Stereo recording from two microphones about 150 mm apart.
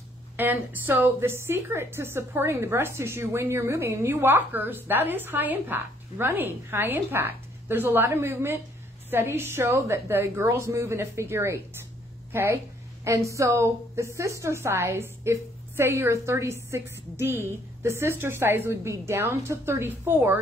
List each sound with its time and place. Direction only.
0.4 s a woman's voice: 15° right (ahead or behind)